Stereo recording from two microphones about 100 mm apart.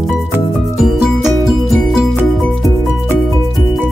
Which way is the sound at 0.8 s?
5° right (ahead or behind).